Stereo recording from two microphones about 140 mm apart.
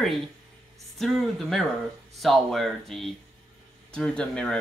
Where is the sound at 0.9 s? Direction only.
Centre (ahead or behind).